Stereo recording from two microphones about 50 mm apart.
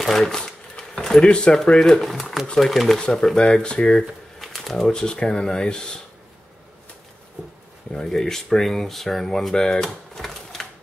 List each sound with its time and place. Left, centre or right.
0.0 s shuffling cards: centre
1.2 s speech: centre
3.0 s speech: centre
4.4 s speech: centre
7.9 s speech: centre